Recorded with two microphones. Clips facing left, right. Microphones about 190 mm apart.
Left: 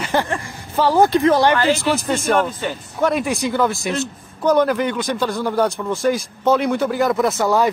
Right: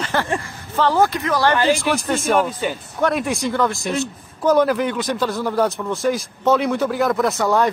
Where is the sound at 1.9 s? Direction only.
Centre (ahead or behind).